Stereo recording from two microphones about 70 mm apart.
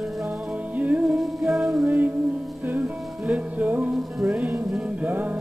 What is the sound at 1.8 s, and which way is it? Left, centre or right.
Music, right.